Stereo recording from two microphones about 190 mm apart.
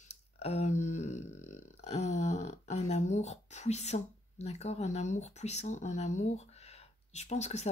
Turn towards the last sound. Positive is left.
turn(degrees=35)  # may be behind; listen again after turning